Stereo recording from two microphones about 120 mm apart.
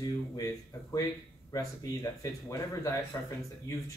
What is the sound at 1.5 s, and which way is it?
Speech, 25° left (ahead or behind).